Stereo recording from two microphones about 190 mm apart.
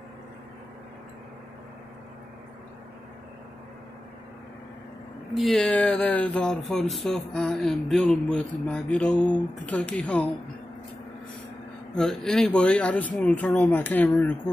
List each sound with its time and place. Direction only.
5.3 s speech: centre (ahead or behind)
11.9 s speech: 5° left (ahead or behind)